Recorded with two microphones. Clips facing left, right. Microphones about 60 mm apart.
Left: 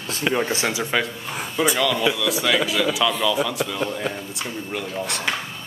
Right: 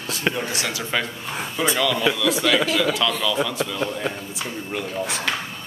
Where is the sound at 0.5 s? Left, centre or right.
Left.